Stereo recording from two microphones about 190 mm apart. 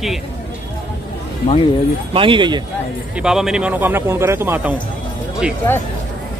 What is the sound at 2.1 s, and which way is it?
Speech, 25° right (ahead or behind).